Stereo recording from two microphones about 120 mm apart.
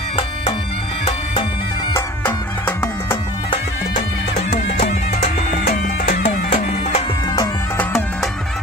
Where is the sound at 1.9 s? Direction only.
20° left (ahead or behind).